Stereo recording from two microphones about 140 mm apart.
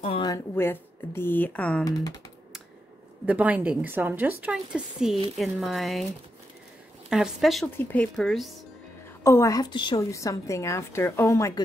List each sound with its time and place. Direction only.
0.6 s speech: 15° left (ahead or behind)
1.9 s a woman's voice: 25° left (ahead or behind)
3.3 s a woman's voice: 10° right (ahead or behind)
7.1 s speech: 5° right (ahead or behind)
7.6 s speech: 10° left (ahead or behind)
9.2 s a woman's voice: 20° left (ahead or behind); by 10.0 s 35° left (ahead or behind)
10.1 s a woman's voice: 20° left (ahead or behind)